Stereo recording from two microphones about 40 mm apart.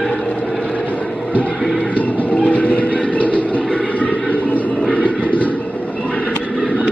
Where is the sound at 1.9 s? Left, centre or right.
Left.